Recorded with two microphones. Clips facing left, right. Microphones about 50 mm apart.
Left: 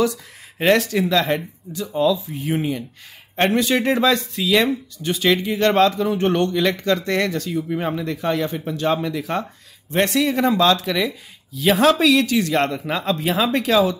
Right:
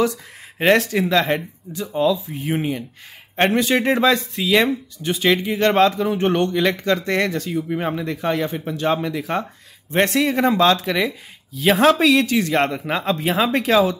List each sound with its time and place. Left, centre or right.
0.8 s speech: right